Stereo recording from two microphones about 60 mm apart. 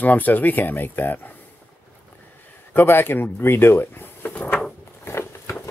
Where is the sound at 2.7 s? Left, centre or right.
Left.